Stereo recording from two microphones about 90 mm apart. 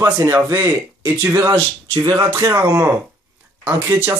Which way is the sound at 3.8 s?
30° right (ahead or behind).